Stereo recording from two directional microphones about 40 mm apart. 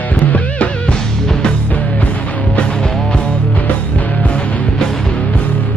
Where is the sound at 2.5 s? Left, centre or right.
Left.